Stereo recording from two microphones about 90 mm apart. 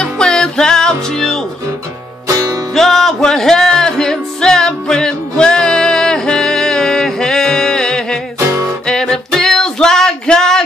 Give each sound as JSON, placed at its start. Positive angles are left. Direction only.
{"t": 0.0, "sound": "music", "side_deg": 10}
{"t": 2.2, "sound": "music", "side_deg": -40}
{"t": 2.7, "sound": "music", "side_deg": 0}
{"t": 8.4, "sound": "music", "side_deg": -35}
{"t": 8.8, "sound": "music", "side_deg": 5}